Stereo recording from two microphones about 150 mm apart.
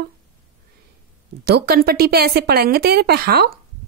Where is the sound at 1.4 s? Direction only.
90° right.